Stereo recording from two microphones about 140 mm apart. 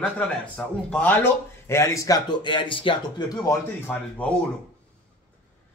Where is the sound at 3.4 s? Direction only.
15° left (ahead or behind).